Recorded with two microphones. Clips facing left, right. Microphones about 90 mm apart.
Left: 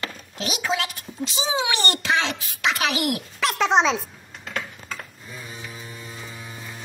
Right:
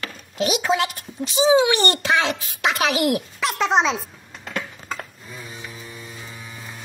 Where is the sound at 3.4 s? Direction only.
Centre (ahead or behind).